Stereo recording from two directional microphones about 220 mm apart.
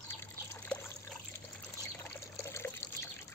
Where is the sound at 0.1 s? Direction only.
10° left (ahead or behind).